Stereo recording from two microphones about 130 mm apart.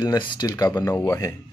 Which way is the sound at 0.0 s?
35° left (ahead or behind).